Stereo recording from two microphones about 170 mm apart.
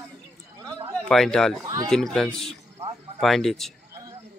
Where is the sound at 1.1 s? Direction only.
Centre (ahead or behind).